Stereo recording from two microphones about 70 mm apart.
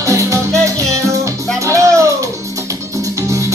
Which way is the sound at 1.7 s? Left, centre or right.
Right.